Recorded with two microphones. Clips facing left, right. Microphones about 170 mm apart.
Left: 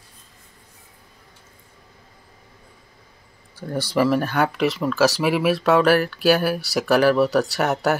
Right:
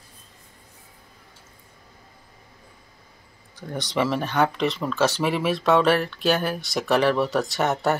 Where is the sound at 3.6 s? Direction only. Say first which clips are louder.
Left 4 dB; 5° left (ahead or behind).